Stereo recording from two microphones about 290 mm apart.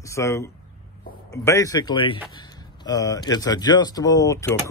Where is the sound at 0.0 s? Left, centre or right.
Centre.